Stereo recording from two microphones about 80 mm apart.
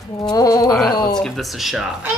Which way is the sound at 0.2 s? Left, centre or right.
Left.